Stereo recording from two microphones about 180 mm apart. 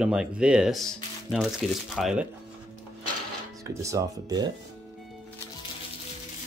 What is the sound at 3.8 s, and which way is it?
Speech, 15° right (ahead or behind).